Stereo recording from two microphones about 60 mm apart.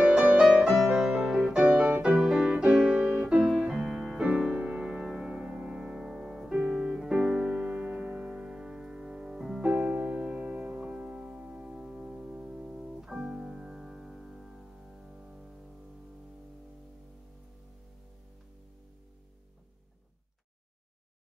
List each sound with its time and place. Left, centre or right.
0.0 s music: centre
0.5 s music: centre
1.7 s music: right
2.1 s music: centre
2.4 s music: centre
4.8 s music: centre